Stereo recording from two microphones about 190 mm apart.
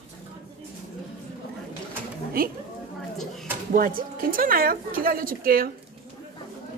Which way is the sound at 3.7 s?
45° right (ahead or behind).